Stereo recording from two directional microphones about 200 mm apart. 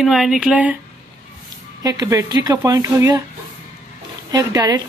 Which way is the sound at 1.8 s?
20° right (ahead or behind).